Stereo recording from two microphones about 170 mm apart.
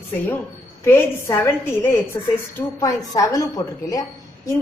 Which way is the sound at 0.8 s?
15° left (ahead or behind).